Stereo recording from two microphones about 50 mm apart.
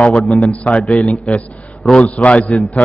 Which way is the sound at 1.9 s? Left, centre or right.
Left.